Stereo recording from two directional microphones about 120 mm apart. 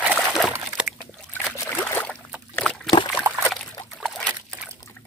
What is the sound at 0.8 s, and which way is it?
Boat, 5° right (ahead or behind).